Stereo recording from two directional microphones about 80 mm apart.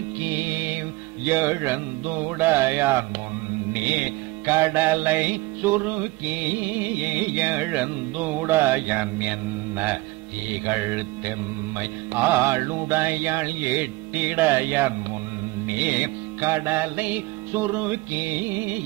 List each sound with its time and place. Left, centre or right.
0.2 s music: right
16.3 s music: right